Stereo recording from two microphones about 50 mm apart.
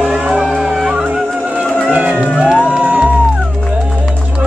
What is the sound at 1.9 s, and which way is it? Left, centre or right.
Music, right.